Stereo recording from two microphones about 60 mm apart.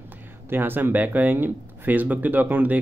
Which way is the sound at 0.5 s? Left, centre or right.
Right.